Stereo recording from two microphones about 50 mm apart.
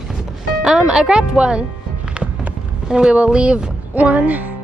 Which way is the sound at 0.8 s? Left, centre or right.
Centre.